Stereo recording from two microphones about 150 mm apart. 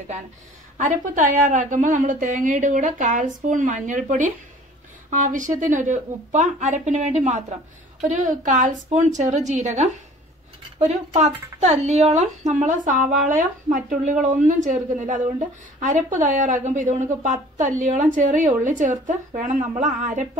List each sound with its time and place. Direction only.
0.7 s speech: 60° right (ahead or behind)